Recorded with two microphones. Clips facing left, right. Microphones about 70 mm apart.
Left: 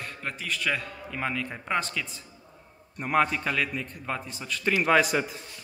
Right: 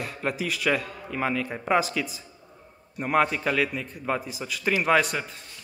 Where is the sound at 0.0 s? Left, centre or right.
Centre.